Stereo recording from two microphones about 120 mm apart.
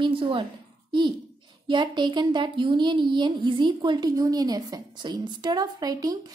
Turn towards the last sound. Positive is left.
turn(degrees=-30)  # may be behind; listen again after turning